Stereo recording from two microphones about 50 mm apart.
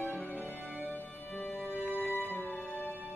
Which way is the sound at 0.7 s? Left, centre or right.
Right.